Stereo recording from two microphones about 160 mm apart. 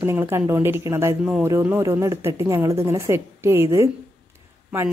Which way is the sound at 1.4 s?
15° right (ahead or behind).